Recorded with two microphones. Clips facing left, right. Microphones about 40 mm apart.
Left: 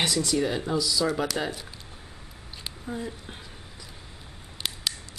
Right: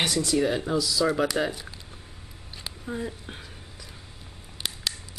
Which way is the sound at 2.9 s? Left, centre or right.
Centre.